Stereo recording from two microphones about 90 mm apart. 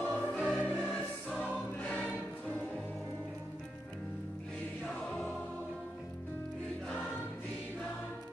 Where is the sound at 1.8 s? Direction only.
15° left (ahead or behind).